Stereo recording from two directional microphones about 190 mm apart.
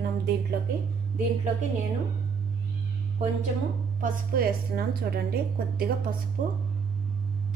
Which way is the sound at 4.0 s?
50° right (ahead or behind).